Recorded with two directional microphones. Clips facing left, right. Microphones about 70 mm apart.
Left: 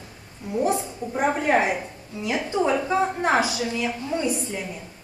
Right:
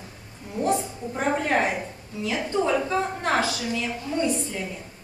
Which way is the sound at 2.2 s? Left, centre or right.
Centre.